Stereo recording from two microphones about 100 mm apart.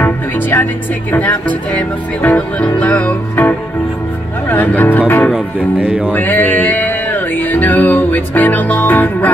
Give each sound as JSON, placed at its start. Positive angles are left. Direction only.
{"t": 0.0, "sound": "music", "side_deg": 20}
{"t": 4.5, "sound": "speech", "side_deg": 15}
{"t": 5.3, "sound": "speech", "side_deg": -10}
{"t": 6.1, "sound": "music", "side_deg": 20}